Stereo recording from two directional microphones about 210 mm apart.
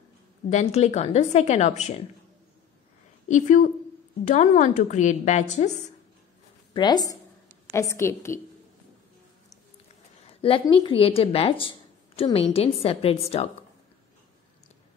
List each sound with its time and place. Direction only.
0.5 s a woman's voice: 35° left (ahead or behind)
3.3 s a woman's voice: 35° left (ahead or behind)
6.7 s a woman's voice: 20° left (ahead or behind)
10.2 s speech: 25° left (ahead or behind)